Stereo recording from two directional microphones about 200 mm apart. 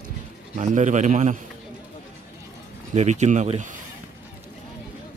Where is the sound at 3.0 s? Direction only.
35° right (ahead or behind).